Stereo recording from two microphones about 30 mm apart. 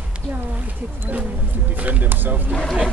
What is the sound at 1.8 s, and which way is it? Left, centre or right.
Speech, right.